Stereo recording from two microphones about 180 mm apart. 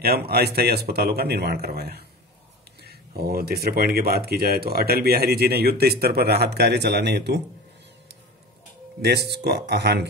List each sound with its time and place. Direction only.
0.0 s speech: 60° right (ahead or behind)
9.0 s speech: 65° right (ahead or behind)